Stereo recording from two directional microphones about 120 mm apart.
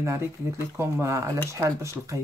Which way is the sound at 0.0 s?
25° right (ahead or behind).